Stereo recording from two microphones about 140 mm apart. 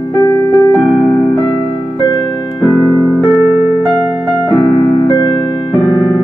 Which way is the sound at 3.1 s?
25° right (ahead or behind).